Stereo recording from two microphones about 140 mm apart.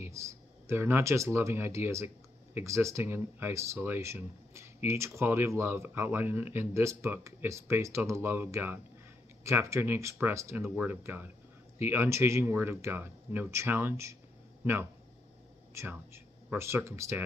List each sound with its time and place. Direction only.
0.0 s speech: 20° right (ahead or behind)